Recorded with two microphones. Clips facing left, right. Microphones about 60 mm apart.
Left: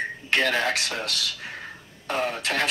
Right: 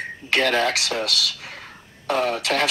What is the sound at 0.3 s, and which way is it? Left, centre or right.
Speech, right.